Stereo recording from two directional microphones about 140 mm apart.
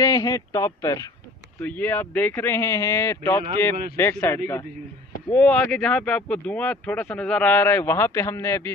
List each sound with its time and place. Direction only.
0.0 s speech: 25° left (ahead or behind)
1.6 s speech: 15° left (ahead or behind)